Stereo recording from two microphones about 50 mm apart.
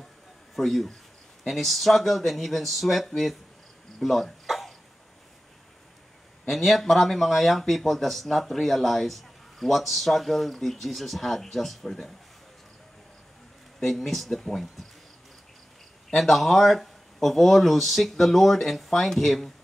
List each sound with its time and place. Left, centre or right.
0.6 s speech: centre
4.0 s a sound: centre
6.5 s speech: centre
13.7 s speech: centre
16.2 s speech: centre